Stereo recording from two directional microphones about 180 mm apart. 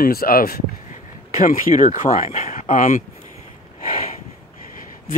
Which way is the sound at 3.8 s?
50° left (ahead or behind).